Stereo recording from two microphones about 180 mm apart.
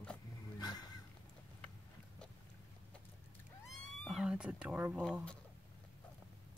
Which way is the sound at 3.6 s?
Centre (ahead or behind).